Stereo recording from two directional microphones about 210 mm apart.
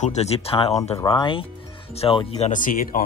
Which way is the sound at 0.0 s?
30° left (ahead or behind).